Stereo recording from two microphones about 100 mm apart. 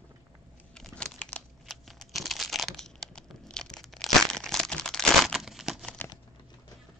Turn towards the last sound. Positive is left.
turn(degrees=0)  # may be behind; listen again after turning